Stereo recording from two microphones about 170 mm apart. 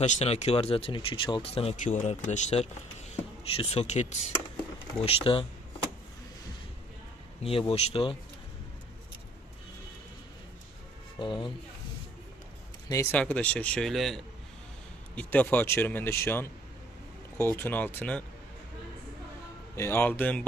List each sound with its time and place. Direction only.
0.0 s speech: 40° left (ahead or behind)
5.0 s speech: 30° left (ahead or behind)
7.7 s speech: 35° left (ahead or behind)
11.1 s speech: 30° left (ahead or behind)
12.8 s speech: 15° left (ahead or behind)
19.7 s speech: 15° left (ahead or behind)